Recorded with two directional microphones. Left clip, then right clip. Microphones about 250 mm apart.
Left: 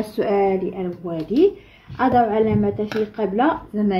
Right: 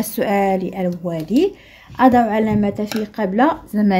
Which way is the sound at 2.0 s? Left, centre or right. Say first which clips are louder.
Right 3 dB; right.